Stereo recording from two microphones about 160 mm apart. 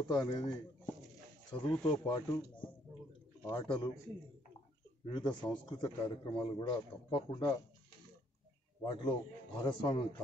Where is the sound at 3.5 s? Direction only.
30° left (ahead or behind).